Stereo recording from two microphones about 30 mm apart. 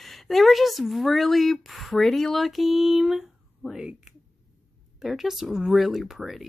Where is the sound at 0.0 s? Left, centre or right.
Centre.